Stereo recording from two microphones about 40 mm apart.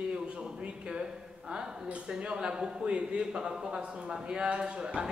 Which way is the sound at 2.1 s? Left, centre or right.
Right.